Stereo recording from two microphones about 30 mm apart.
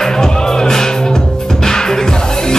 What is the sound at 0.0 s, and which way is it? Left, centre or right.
Music, centre.